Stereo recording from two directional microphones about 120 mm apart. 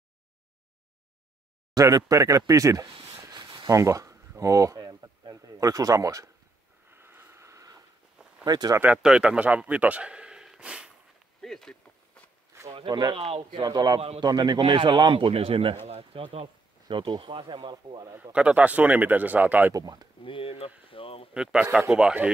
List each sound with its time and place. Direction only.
1.8 s speech: 30° right (ahead or behind)
3.7 s a sound: 25° right (ahead or behind)
8.5 s a man's voice: 35° right (ahead or behind)
8.7 s a man's voice: 10° right (ahead or behind)
11.4 s speech: 5° left (ahead or behind)
12.7 s a man's voice: 40° right (ahead or behind)
18.3 s speech: 10° right (ahead or behind)
19.7 s a man's voice: 35° right (ahead or behind)
20.2 s speech: 50° left (ahead or behind)
20.9 s a sound: 50° left (ahead or behind)
21.3 s speech: 5° right (ahead or behind)